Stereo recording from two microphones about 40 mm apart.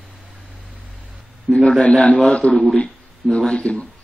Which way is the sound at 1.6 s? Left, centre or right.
Left.